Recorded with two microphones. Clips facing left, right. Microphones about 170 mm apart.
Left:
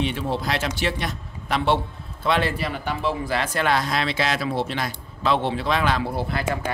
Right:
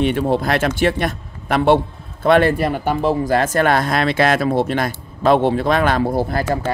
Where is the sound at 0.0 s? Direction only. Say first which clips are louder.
Right 8 dB; 55° right (ahead or behind).